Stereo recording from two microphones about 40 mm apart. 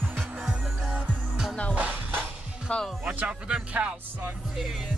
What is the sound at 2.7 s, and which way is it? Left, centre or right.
Speech, left.